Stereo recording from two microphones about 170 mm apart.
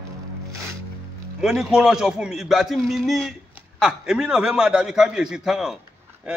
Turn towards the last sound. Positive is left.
turn(degrees=0)  # may be behind; listen again after turning